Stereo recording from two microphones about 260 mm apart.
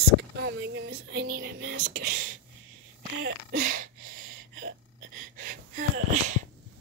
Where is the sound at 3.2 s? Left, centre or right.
Right.